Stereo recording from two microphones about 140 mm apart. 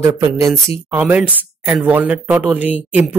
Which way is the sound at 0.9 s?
10° right (ahead or behind).